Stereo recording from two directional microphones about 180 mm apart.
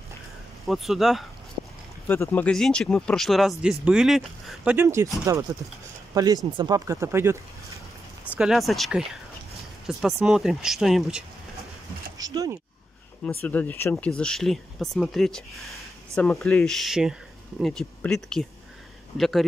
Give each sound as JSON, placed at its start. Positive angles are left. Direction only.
{"t": 0.7, "sound": "speech", "side_deg": 0}
{"t": 2.0, "sound": "speech", "side_deg": 15}
{"t": 4.7, "sound": "speech", "side_deg": -15}
{"t": 8.4, "sound": "speech", "side_deg": 0}
{"t": 12.2, "sound": "speech", "side_deg": -20}
{"t": 13.2, "sound": "speech", "side_deg": 10}